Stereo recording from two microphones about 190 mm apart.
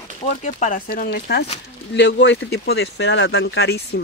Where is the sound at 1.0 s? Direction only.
60° left (ahead or behind).